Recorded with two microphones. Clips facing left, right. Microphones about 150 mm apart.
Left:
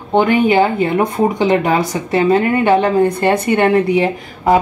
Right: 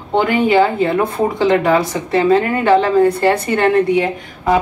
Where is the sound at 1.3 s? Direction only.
20° left (ahead or behind).